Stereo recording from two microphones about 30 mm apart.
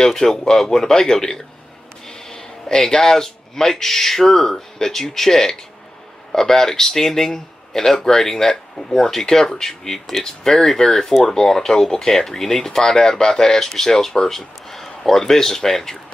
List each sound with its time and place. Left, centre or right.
0.0 s a man's voice: centre
10.2 s speech: centre